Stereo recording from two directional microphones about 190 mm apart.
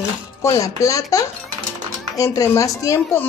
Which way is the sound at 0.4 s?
15° left (ahead or behind).